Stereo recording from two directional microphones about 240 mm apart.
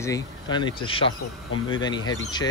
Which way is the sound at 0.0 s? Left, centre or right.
Centre.